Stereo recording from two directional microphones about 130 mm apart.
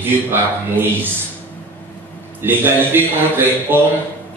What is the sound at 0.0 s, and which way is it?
Speech, 15° right (ahead or behind).